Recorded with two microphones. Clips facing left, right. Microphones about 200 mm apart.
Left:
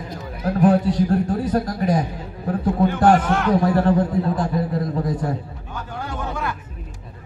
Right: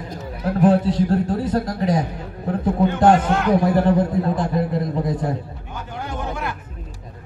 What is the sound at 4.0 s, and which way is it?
Speech, centre (ahead or behind).